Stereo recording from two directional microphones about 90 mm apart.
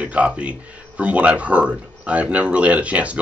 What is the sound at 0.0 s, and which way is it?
Speech, 15° right (ahead or behind).